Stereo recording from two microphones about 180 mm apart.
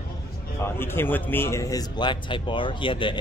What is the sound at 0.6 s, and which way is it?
Speech, 10° left (ahead or behind).